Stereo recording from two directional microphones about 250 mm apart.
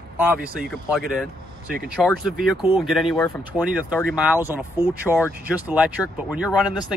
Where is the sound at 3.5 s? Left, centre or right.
Centre.